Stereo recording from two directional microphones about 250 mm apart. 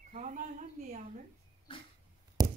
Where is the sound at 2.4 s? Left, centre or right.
Centre.